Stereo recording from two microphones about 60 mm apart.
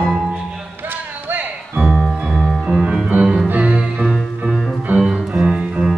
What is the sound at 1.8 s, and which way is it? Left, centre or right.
Music, centre.